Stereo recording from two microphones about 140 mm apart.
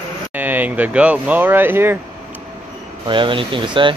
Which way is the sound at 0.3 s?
10° right (ahead or behind).